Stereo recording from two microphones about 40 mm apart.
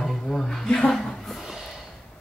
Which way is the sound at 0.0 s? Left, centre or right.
Centre.